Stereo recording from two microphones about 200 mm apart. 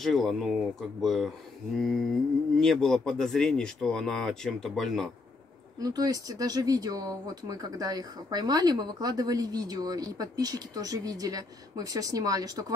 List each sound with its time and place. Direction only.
0.0 s speech: centre (ahead or behind)
5.8 s speech: 20° right (ahead or behind)